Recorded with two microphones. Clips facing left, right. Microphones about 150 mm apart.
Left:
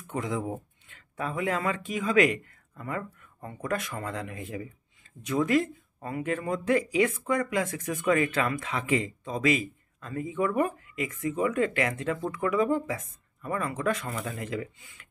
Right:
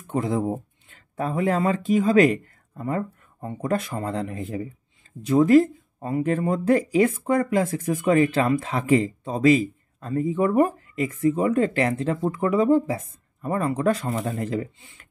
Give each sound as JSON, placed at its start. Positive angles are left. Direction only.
{"t": 0.0, "sound": "speech", "side_deg": -30}